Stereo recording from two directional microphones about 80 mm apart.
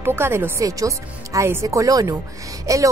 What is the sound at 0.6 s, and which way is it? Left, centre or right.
Speech, right.